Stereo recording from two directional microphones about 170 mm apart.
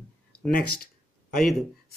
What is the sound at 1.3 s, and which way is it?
Speech, 5° left (ahead or behind).